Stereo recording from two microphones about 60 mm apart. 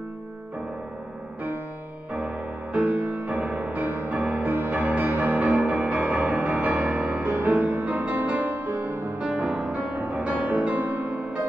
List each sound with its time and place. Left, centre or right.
2.1 s music: right
9.2 s music: centre